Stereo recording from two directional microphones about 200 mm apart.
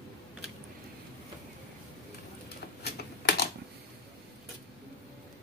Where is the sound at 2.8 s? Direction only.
55° left (ahead or behind).